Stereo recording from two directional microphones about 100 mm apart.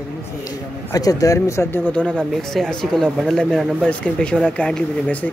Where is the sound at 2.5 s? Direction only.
5° left (ahead or behind).